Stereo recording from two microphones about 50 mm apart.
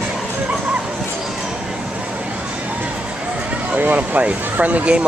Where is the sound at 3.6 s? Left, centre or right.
Right.